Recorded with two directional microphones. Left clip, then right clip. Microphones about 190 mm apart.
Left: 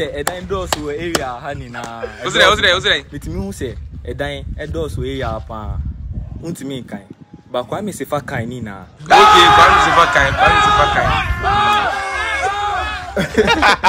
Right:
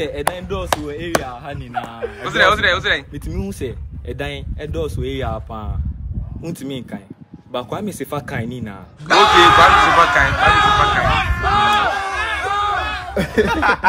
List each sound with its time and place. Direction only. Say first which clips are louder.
0.3 s speech: left 1 dB; 10° left (ahead or behind)
2.2 s speech: left 2 dB; 5° left (ahead or behind)
13.5 s a sound: left 4 dB; 30° left (ahead or behind)